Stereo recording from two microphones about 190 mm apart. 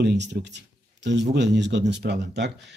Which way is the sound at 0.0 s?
65° right (ahead or behind).